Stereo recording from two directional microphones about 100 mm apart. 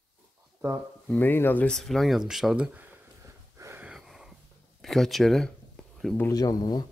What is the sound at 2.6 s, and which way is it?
Speech, 15° right (ahead or behind).